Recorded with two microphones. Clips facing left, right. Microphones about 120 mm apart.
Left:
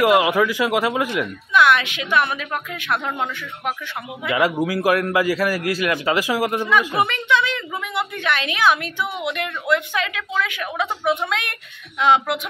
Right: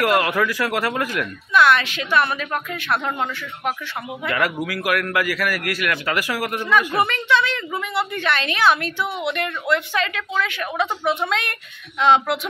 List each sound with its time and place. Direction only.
0.0 s a woman's voice: 15° left (ahead or behind)